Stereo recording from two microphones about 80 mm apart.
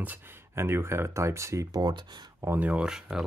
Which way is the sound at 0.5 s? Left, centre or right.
Right.